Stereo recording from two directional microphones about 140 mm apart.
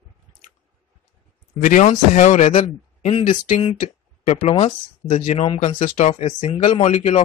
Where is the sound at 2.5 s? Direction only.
45° left (ahead or behind).